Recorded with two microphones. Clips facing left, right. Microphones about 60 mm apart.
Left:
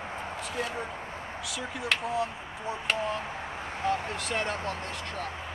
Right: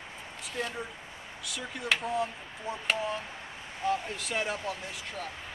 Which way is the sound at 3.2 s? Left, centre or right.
Left.